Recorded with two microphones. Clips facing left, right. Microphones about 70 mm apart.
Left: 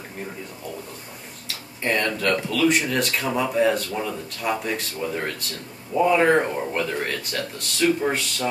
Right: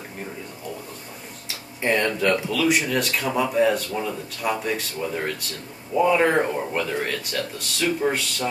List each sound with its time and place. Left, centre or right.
1.8 s speech: centre